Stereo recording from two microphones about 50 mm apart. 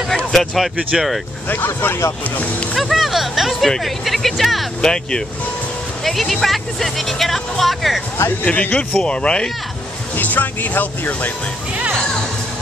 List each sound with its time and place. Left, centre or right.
0.1 s a sound: centre
1.5 s speech: left
2.8 s music: centre
3.8 s speech: centre
4.8 s speech: centre
8.5 s speech: left
10.1 s speech: left